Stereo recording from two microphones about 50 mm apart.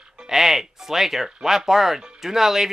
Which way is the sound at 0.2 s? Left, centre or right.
Centre.